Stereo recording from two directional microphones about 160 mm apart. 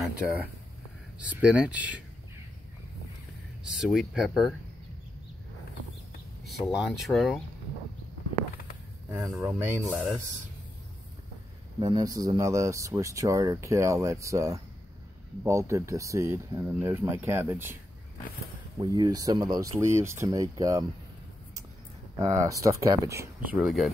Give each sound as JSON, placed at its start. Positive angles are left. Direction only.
{"t": 0.0, "sound": "speech", "side_deg": -10}
{"t": 3.6, "sound": "speech", "side_deg": -5}
{"t": 6.4, "sound": "speech", "side_deg": 0}
{"t": 9.4, "sound": "speech", "side_deg": -10}
{"t": 11.8, "sound": "speech", "side_deg": -25}
{"t": 18.8, "sound": "speech", "side_deg": -25}
{"t": 22.2, "sound": "speech", "side_deg": -20}